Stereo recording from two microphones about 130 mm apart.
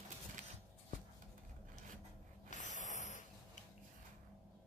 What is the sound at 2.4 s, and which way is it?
Snort, 70° left (ahead or behind).